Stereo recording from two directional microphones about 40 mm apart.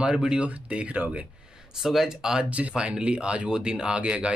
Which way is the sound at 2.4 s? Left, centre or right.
Right.